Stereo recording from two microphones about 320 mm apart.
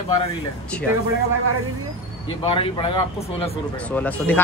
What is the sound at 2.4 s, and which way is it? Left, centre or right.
Speech, centre.